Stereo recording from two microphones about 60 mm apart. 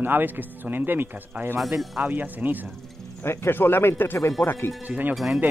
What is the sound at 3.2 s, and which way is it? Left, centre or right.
Speech, left.